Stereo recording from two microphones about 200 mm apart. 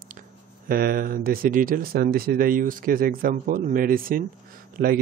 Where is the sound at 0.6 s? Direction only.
50° right (ahead or behind).